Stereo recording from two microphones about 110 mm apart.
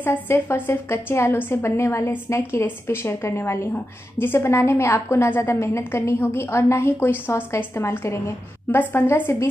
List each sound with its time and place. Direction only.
0.0 s a woman's voice: 20° left (ahead or behind)